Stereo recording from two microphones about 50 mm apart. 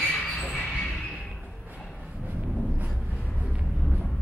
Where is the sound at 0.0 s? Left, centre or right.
Left.